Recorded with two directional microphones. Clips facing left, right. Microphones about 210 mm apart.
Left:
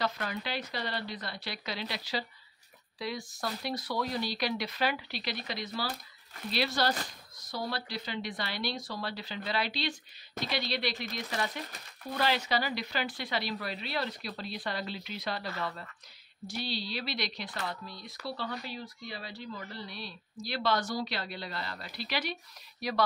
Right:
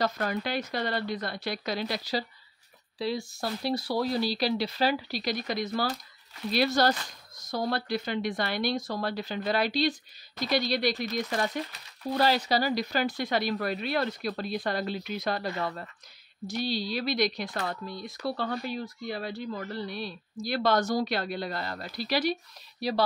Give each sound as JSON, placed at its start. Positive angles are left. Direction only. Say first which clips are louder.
{"t": 0.0, "sound": "speech", "louder": "right 5 dB", "side_deg": -45}
{"t": 3.0, "sound": "speech", "louder": "right 6 dB", "side_deg": -30}
{"t": 16.6, "sound": "speech", "louder": "right 7 dB", "side_deg": -45}